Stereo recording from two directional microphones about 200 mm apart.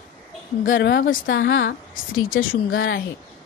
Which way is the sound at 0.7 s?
60° left (ahead or behind).